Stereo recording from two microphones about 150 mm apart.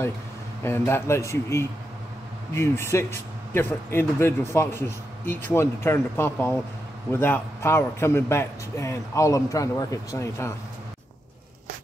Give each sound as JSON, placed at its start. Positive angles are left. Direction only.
{"t": 0.7, "sound": "speech", "side_deg": 15}